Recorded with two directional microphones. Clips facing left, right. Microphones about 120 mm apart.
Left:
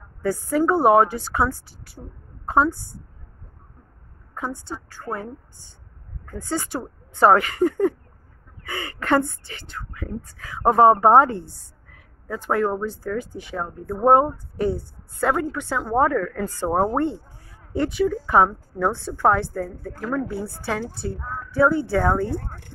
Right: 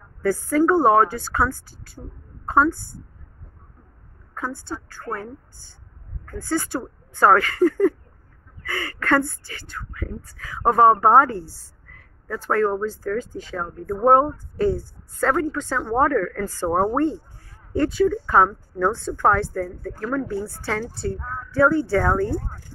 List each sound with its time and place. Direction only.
0.2 s speech: 20° left (ahead or behind)
2.0 s speech: 10° left (ahead or behind)
2.4 s a woman's voice: 20° left (ahead or behind)
4.4 s speech: 20° left (ahead or behind)
6.2 s a woman's voice: 20° left (ahead or behind)